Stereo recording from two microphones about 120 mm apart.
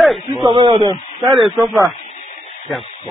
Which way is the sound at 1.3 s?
Centre (ahead or behind).